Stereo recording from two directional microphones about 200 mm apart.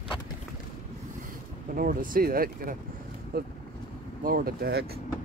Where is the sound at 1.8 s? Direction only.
45° right (ahead or behind).